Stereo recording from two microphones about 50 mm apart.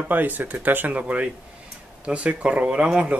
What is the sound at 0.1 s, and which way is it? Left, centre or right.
Speech, right.